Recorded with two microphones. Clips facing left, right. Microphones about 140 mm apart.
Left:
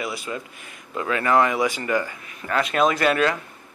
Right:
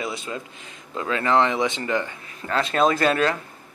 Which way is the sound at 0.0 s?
25° right (ahead or behind).